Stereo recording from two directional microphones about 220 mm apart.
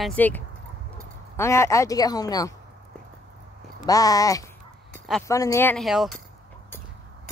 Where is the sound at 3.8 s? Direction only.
15° left (ahead or behind).